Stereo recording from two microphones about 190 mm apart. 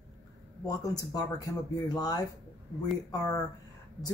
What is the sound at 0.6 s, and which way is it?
Speech, 20° left (ahead or behind).